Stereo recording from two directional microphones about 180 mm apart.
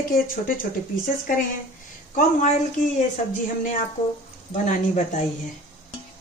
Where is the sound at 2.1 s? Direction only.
45° left (ahead or behind).